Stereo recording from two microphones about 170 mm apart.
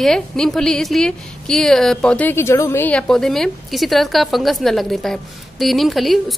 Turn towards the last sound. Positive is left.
turn(degrees=0)  # may be behind; listen again after turning